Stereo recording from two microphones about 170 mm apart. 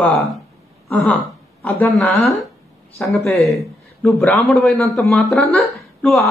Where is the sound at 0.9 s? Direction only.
5° left (ahead or behind).